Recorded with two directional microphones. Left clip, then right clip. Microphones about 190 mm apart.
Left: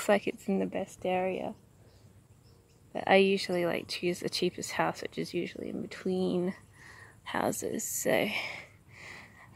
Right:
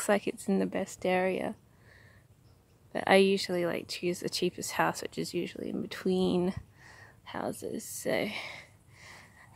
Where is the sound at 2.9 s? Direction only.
15° right (ahead or behind).